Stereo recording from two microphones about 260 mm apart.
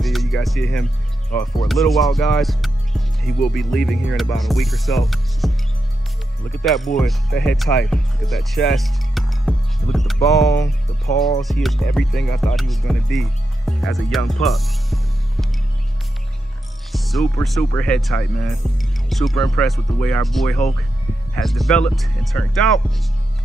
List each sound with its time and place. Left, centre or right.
0.0 s music: centre
1.3 s speech: centre
10.5 s music: centre
11.4 s speech: centre
16.9 s speech: centre